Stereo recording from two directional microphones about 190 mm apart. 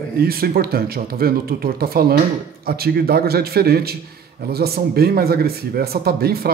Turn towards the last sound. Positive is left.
turn(degrees=-55)  # may be behind; listen again after turning